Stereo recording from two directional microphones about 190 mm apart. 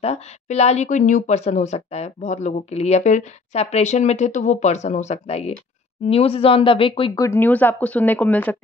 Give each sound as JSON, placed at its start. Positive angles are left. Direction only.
{"t": 0.0, "sound": "speech", "side_deg": 35}